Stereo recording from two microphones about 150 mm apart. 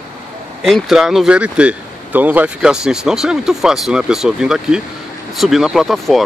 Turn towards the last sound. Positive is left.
turn(degrees=0)  # may be behind; listen again after turning